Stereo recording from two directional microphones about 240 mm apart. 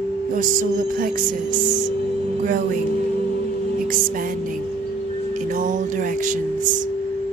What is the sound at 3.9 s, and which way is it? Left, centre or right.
Music, right.